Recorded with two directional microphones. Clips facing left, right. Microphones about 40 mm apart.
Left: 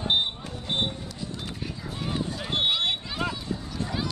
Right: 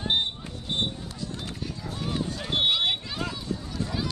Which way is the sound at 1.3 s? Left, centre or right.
Centre.